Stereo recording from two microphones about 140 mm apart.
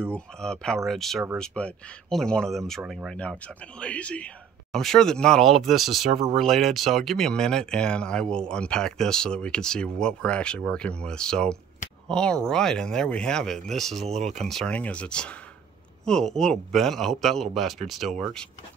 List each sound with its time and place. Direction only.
0.0 s speech: 5° left (ahead or behind)
14.0 s speech: 50° right (ahead or behind)
14.3 s speech: 5° left (ahead or behind)